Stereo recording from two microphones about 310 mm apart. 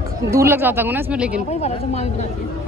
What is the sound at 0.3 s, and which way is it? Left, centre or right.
Speech, centre.